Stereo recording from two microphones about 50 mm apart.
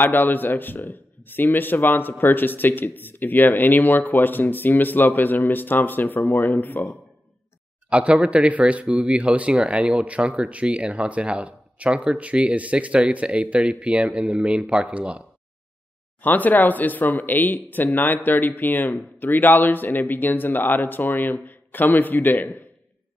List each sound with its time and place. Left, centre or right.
0.0 s a man's voice: left
7.9 s speech: right
16.2 s a man's voice: left